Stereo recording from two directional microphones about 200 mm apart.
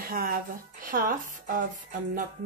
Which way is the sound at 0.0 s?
45° right (ahead or behind).